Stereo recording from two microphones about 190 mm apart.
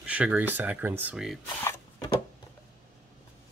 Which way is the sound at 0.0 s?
5° right (ahead or behind).